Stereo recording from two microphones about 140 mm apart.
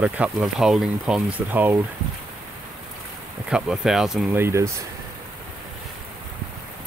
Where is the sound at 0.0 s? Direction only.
10° right (ahead or behind).